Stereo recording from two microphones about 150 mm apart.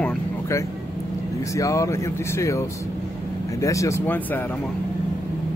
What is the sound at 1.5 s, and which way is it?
Speech, 20° left (ahead or behind).